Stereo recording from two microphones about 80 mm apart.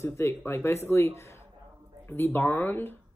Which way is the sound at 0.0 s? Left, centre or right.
Left.